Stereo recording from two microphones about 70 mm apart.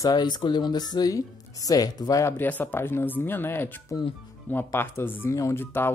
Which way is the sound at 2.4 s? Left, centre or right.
Left.